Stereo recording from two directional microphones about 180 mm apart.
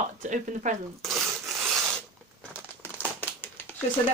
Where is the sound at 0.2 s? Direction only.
45° right (ahead or behind).